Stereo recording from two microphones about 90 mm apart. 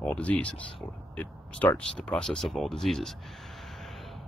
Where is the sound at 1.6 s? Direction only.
15° left (ahead or behind).